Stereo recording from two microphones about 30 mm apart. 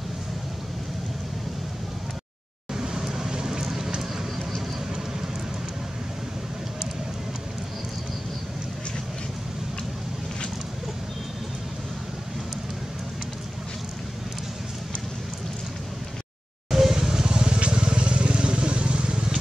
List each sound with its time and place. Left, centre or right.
2.7 s vehicle: centre
16.7 s vehicle: centre
17.5 s vehicle: right